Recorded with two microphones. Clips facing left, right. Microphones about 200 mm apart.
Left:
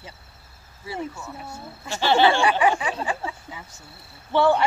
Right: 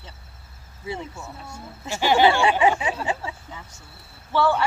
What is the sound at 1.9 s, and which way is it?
Speech, 15° right (ahead or behind).